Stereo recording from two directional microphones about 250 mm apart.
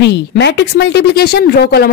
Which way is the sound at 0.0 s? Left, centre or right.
Left.